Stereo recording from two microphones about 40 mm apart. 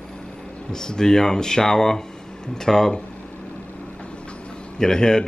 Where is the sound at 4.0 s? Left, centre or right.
Left.